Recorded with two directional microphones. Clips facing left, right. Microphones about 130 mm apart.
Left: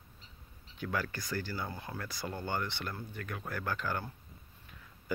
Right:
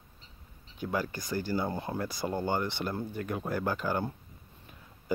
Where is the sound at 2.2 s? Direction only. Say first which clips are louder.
Right 5 dB; 20° right (ahead or behind).